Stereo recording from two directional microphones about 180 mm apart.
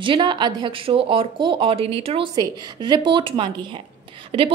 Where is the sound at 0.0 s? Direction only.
25° right (ahead or behind).